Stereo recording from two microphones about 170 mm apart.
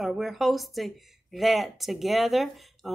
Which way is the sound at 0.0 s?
Centre (ahead or behind).